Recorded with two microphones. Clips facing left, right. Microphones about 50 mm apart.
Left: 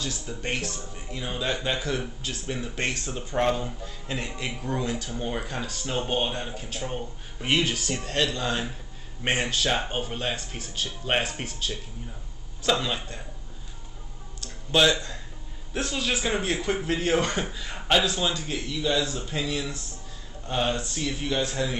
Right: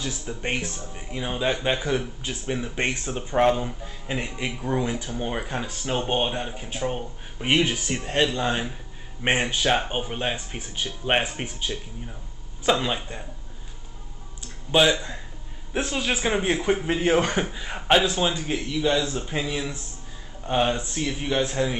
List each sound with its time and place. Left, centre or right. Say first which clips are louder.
0.0 s speech: right 2 dB; centre
14.4 s a sound: right 2 dB; centre
15.7 s speech: right 2 dB; right